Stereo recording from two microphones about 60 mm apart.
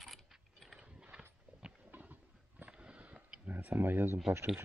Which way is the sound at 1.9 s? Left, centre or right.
Right.